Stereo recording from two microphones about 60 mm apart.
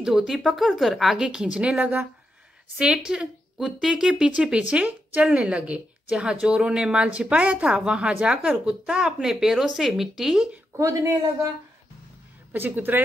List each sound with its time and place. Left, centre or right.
0.0 s speech: centre; by 2.0 s right
2.8 s speech: centre
12.5 s speech: right